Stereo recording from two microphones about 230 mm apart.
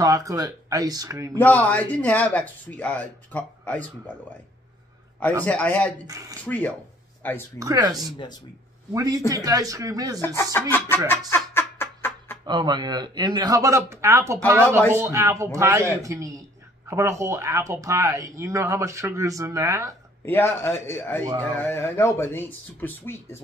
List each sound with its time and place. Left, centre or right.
0.0 s a man's voice: centre
1.4 s speech: centre
5.4 s speech: centre
6.0 s a man's voice: centre
6.4 s speech: centre
7.5 s a man's voice: centre
10.2 s speech: centre
11.1 s a sound: centre
12.4 s a man's voice: centre
20.2 s speech: centre